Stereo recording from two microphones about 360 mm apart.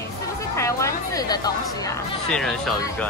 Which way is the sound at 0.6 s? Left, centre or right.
Centre.